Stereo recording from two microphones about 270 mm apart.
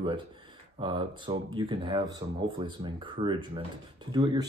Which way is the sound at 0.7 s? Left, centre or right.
Centre.